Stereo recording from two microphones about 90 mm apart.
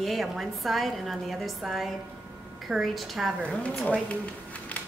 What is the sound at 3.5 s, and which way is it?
Speech, 15° left (ahead or behind).